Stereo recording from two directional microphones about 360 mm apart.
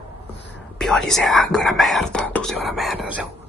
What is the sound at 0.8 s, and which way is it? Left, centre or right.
Whispering, centre.